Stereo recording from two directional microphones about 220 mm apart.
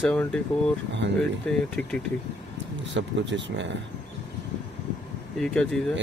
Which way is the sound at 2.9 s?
55° right (ahead or behind).